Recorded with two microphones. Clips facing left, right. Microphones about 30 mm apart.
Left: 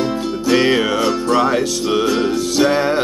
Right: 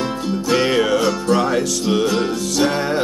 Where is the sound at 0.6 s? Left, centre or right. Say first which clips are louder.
Left 1 dB; left.